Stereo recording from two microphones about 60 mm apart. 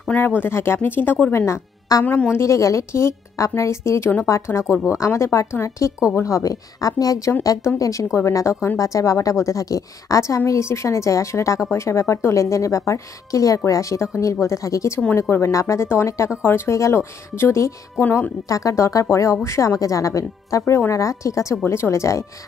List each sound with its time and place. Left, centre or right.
0.1 s speech: left
1.3 s speech: left
2.0 s a woman's voice: left
2.3 s a woman's voice: left
6.2 s speech: left
7.6 s a woman's voice: left
15.1 s speech: left
18.5 s a woman's voice: left
21.6 s speech: left